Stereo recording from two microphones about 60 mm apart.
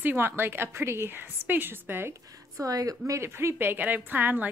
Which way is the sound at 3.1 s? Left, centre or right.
Right.